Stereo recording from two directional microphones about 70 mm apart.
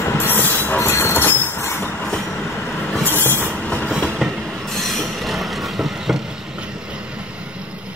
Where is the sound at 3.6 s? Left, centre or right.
Centre.